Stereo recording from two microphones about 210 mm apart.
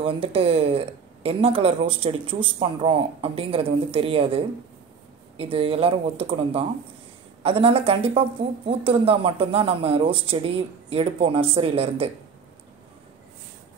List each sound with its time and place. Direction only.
0.0 s speech: 25° right (ahead or behind)